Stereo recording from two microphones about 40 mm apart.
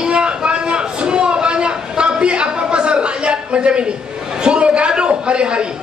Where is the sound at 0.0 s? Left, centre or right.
Right.